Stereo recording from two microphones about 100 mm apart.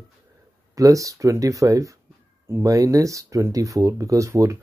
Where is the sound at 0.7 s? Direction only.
35° right (ahead or behind).